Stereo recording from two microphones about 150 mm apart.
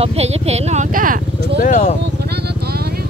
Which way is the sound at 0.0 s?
45° right (ahead or behind).